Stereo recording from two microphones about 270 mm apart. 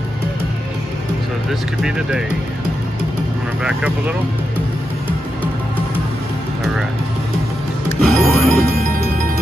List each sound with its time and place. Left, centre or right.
1.5 s speech: centre
8.0 s music: centre